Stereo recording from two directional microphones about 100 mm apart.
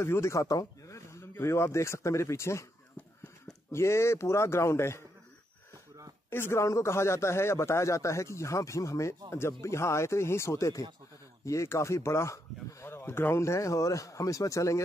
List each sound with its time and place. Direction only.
0.0 s speech: 25° left (ahead or behind)
3.7 s speech: 25° left (ahead or behind)
6.3 s speech: 25° left (ahead or behind)